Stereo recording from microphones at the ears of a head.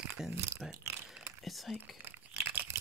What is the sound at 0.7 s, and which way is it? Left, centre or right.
Mechanisms, right.